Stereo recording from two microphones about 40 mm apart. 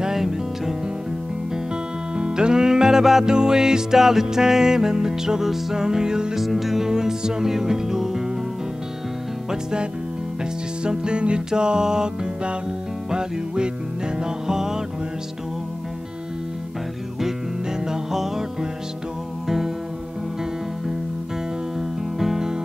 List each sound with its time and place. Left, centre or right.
0.0 s music: centre
2.1 s music: right
6.4 s music: centre
9.5 s music: centre
14.1 s music: centre
17.7 s music: centre
21.7 s music: centre